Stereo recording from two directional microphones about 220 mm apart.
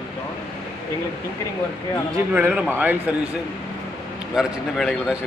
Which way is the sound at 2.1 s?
10° right (ahead or behind).